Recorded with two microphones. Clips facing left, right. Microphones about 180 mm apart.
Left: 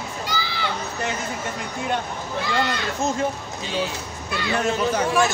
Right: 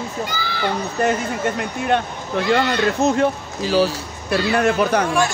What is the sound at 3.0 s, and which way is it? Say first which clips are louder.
A man's voice: right 6 dB; 80° right.